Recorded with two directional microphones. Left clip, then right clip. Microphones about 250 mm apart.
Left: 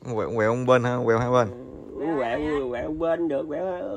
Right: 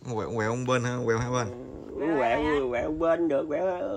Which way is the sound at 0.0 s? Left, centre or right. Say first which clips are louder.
Left 6 dB; centre.